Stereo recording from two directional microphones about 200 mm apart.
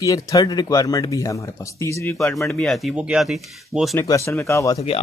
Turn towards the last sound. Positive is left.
turn(degrees=15)  # may be behind; listen again after turning